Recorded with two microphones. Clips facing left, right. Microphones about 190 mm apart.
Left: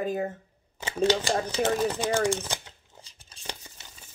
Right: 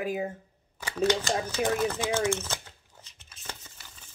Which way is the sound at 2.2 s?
15° left (ahead or behind).